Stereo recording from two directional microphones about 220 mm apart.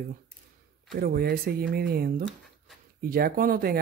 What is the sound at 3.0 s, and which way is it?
Speech, 40° right (ahead or behind).